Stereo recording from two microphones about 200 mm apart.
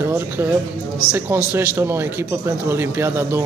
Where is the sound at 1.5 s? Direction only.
10° right (ahead or behind).